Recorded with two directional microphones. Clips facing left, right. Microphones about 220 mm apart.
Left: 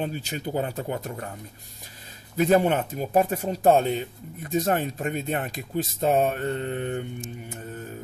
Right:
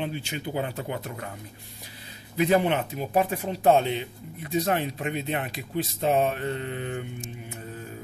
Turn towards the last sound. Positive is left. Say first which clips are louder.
# left 3 dB
turn(degrees=40)  # may be behind; listen again after turning